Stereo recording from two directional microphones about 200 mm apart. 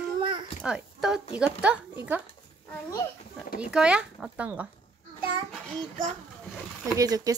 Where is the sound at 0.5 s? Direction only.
5° right (ahead or behind).